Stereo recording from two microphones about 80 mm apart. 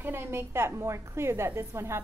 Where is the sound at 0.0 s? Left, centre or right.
Right.